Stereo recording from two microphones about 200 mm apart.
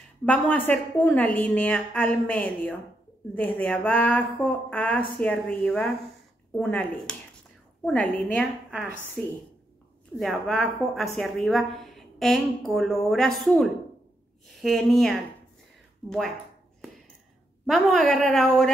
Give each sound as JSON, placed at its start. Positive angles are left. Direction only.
{"t": 0.2, "sound": "a woman's voice", "side_deg": 10}
{"t": 10.1, "sound": "a woman's voice", "side_deg": 0}
{"t": 17.6, "sound": "a woman's voice", "side_deg": 0}